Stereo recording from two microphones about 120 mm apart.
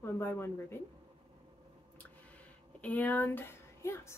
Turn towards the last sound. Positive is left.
turn(degrees=20)  # may be behind; listen again after turning